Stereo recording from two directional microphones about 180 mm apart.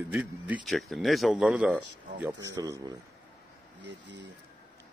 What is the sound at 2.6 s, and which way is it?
Speech, 20° right (ahead or behind).